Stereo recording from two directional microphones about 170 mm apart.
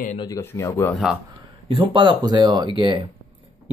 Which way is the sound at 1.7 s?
30° right (ahead or behind).